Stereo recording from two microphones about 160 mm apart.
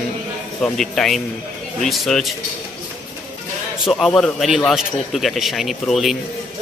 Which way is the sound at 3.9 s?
Centre (ahead or behind).